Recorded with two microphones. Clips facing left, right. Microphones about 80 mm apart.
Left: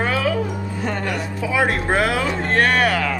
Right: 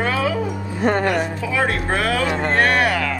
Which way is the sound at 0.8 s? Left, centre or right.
Right.